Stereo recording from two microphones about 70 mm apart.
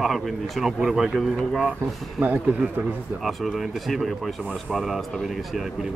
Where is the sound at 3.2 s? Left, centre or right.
Centre.